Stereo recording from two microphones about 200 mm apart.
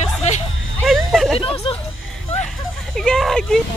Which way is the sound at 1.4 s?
25° left (ahead or behind).